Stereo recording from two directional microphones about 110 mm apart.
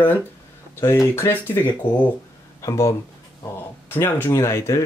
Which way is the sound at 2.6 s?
30° left (ahead or behind).